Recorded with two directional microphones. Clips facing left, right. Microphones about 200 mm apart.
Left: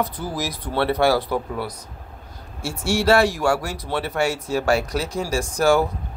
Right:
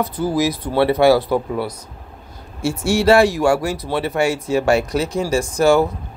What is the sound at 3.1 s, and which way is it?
Speech, 10° right (ahead or behind).